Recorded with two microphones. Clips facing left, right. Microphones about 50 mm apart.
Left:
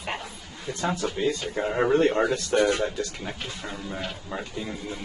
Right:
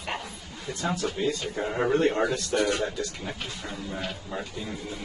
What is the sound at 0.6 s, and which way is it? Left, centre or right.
Speech, left.